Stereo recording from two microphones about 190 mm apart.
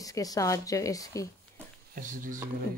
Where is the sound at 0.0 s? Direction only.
20° left (ahead or behind).